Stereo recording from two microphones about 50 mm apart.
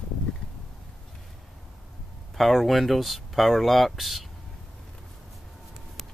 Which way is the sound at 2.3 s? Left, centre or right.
Centre.